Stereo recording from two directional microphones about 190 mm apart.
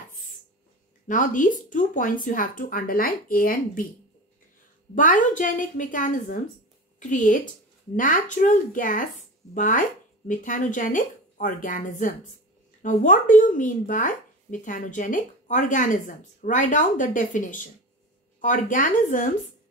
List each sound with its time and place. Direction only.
1.0 s speech: 45° left (ahead or behind)
4.9 s speech: 45° left (ahead or behind)